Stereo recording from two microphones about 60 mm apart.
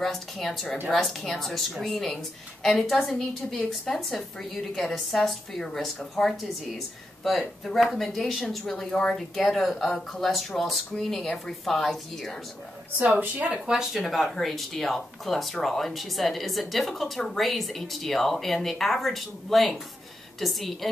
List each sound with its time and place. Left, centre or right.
0.0 s speech: centre
12.9 s a woman's voice: right
13.7 s speech: centre